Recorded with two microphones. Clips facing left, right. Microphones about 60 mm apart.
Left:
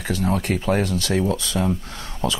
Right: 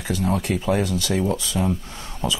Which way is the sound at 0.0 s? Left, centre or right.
Left.